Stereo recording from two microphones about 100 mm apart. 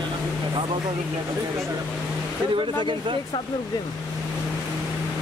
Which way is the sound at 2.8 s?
55° right (ahead or behind).